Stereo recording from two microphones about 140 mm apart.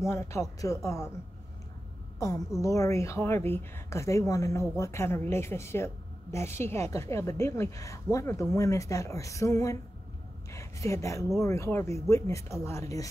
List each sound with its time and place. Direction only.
0.0 s a woman's voice: 20° left (ahead or behind)
2.1 s a woman's voice: 25° left (ahead or behind)